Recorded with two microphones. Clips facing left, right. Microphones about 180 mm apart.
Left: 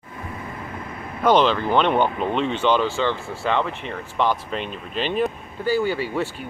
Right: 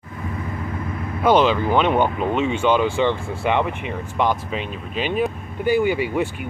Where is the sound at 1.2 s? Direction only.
10° right (ahead or behind).